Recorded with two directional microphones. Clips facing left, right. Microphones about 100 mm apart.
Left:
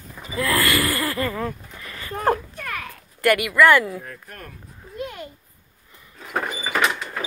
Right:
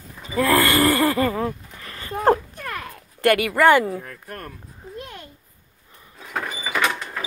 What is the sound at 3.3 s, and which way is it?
Speech, 40° right (ahead or behind).